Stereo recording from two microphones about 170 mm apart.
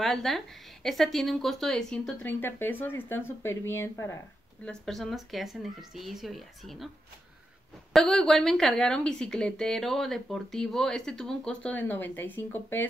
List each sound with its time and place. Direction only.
0.0 s a woman's voice: centre (ahead or behind)
4.6 s a woman's voice: centre (ahead or behind)
7.9 s a woman's voice: 5° left (ahead or behind)